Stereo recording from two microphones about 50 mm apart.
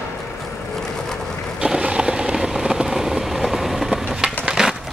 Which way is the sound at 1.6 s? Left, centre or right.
Right.